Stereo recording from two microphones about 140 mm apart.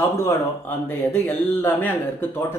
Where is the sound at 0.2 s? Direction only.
15° left (ahead or behind).